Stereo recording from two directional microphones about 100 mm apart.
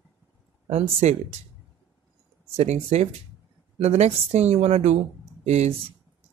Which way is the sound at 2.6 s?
90° right.